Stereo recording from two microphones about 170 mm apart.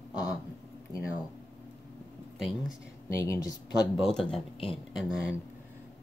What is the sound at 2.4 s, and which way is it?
Speech, centre (ahead or behind).